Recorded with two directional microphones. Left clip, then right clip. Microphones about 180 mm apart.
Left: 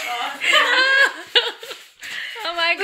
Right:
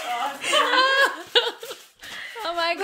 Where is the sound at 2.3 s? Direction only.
10° right (ahead or behind).